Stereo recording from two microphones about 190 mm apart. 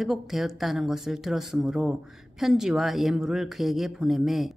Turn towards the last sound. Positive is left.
turn(degrees=0)  # may be behind; listen again after turning